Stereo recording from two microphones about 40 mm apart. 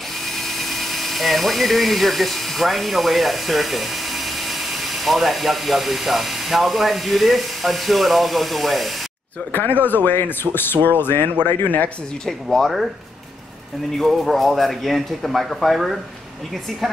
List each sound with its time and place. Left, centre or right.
0.2 s speech: centre
9.5 s speech: left
11.6 s speech: left
12.3 s speech: centre
12.6 s speech: centre
13.9 s speech: centre